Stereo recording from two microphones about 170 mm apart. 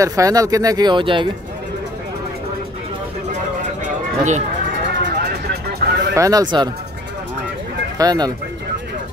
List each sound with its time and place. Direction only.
0.0 s speech: 20° right (ahead or behind)
3.8 s a sound: 45° right (ahead or behind)
5.0 s vehicle: 70° right (ahead or behind)
6.1 s speech: 20° right (ahead or behind)
8.0 s speech: 25° right (ahead or behind)